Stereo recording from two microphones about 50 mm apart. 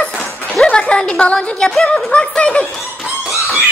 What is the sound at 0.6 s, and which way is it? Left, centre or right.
Speech, centre.